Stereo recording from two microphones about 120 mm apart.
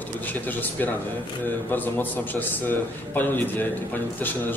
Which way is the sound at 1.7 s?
15° left (ahead or behind).